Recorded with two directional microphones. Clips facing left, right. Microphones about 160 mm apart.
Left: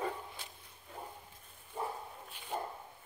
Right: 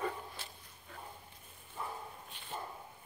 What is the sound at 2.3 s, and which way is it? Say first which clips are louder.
Dog: left 2 dB; 10° left (ahead or behind).